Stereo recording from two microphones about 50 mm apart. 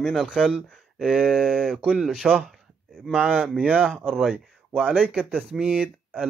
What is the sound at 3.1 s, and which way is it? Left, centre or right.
Speech, right.